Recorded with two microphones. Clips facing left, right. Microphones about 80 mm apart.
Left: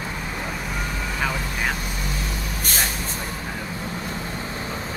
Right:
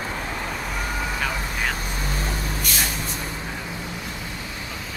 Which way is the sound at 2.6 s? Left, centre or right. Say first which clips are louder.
Left 3 dB; left.